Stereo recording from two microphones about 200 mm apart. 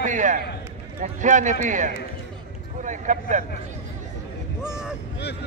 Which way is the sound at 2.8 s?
40° right (ahead or behind).